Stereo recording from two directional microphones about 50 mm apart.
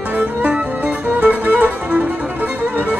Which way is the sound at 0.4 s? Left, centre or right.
Right.